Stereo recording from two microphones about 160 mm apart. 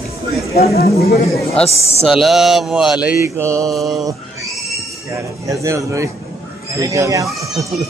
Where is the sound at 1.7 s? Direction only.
40° left (ahead or behind).